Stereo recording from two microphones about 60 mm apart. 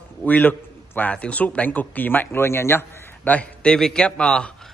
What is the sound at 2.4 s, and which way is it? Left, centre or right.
Speech, left.